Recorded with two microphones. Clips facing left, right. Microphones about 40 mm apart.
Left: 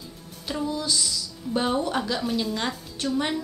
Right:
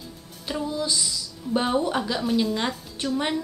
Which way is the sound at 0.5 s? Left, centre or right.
Centre.